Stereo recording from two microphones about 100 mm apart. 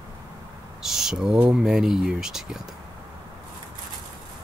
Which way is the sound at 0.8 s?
5° right (ahead or behind).